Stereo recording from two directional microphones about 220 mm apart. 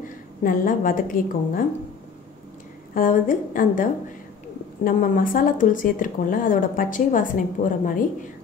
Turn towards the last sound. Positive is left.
turn(degrees=35)  # may be behind; listen again after turning